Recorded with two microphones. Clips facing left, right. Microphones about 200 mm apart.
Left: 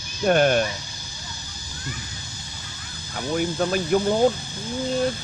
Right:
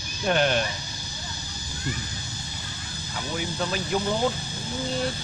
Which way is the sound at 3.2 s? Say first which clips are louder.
Left 6 dB; 50° left (ahead or behind).